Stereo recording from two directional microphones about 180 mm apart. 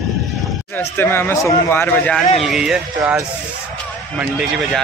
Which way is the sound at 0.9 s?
10° left (ahead or behind).